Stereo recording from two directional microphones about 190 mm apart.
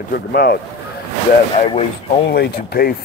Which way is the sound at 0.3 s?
55° left (ahead or behind).